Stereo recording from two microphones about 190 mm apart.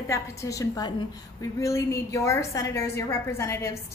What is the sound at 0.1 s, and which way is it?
A woman's voice, 15° left (ahead or behind).